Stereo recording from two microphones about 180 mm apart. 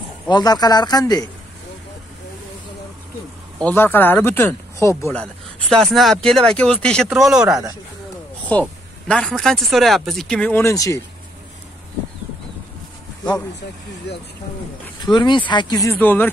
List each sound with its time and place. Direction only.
0.3 s speech: 20° left (ahead or behind)
3.6 s speech: 10° left (ahead or behind)
10.6 s speech: 15° left (ahead or behind)
14.1 s speech: 70° left (ahead or behind)
15.0 s speech: 25° left (ahead or behind)